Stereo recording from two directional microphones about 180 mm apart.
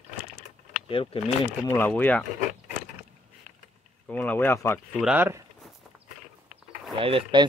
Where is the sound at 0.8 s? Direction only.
30° left (ahead or behind).